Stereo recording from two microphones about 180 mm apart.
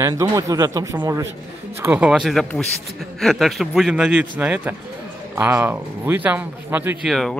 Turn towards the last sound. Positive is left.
turn(degrees=0)  # may be behind; listen again after turning